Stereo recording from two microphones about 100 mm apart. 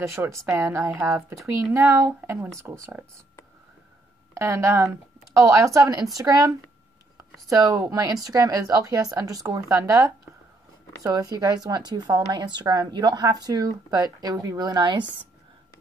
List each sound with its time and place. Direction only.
0.0 s speech: 25° right (ahead or behind)
4.3 s speech: 30° right (ahead or behind); by 15.2 s 50° right (ahead or behind)